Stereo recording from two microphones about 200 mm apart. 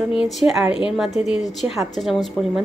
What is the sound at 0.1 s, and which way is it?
A woman's voice, centre (ahead or behind).